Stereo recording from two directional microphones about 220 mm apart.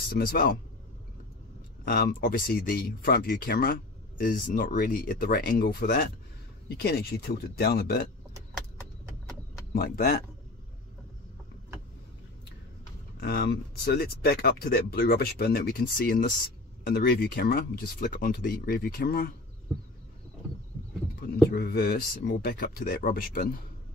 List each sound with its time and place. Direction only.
0.2 s speech: 40° left (ahead or behind)
1.9 s speech: 40° left (ahead or behind)
9.7 s speech: 45° left (ahead or behind)
13.2 s speech: 45° left (ahead or behind)
21.5 s speech: 45° left (ahead or behind)